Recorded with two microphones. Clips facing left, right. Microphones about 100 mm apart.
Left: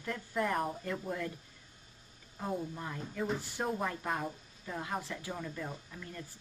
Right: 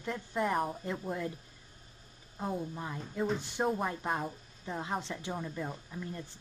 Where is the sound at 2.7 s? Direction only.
20° right (ahead or behind).